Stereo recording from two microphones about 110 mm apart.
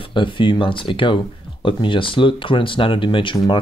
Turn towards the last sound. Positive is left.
turn(degrees=45)  # may be behind; listen again after turning